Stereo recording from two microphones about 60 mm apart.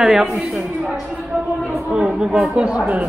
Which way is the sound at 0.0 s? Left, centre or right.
Centre.